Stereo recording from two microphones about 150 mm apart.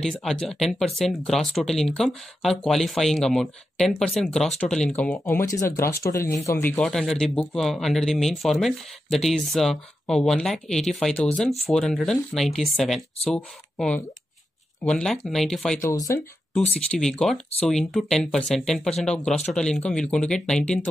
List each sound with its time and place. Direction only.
0.0 s speech: 5° left (ahead or behind); by 6.8 s 20° left (ahead or behind)
6.8 s speech: 5° left (ahead or behind)
15.8 s speech: 20° left (ahead or behind)
16.9 s speech: 5° left (ahead or behind)